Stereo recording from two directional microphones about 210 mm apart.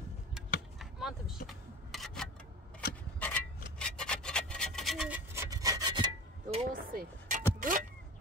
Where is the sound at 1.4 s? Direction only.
Centre (ahead or behind); by 6.6 s 25° right (ahead or behind).